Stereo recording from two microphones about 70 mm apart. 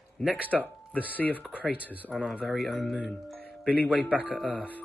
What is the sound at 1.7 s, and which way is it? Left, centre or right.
Speech, right.